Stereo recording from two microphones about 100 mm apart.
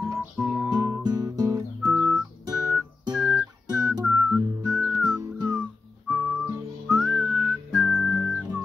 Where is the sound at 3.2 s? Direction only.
10° right (ahead or behind).